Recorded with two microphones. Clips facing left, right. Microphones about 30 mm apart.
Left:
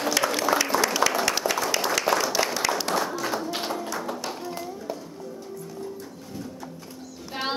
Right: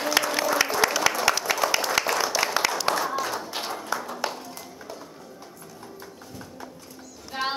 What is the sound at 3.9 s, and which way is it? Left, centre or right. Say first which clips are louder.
Music: right 2 dB; right.